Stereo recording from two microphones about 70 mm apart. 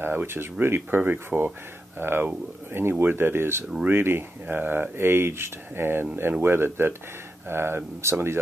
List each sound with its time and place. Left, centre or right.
0.0 s speech: right